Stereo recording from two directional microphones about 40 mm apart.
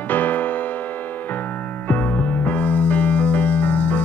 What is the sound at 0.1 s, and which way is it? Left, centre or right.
Music, left.